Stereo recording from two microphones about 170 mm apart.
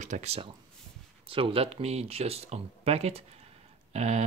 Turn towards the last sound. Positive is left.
turn(degrees=-40)  # may be behind; listen again after turning